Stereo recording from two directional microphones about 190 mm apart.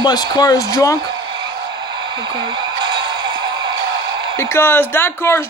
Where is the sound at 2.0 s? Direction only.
25° right (ahead or behind).